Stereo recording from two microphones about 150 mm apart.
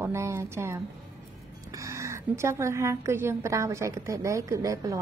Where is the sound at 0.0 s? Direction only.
15° right (ahead or behind).